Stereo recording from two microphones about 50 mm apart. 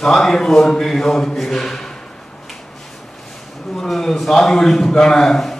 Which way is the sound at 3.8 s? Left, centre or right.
Centre.